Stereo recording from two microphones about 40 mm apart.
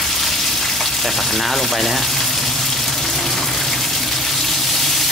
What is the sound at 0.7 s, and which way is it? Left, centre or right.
Speech, centre.